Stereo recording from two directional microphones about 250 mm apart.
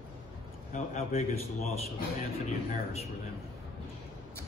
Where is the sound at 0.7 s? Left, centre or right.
Left.